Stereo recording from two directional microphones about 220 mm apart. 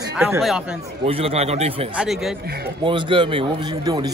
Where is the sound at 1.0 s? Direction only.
25° right (ahead or behind).